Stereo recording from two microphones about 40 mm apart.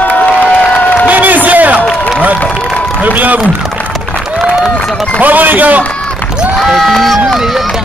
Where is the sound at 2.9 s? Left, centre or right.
Right.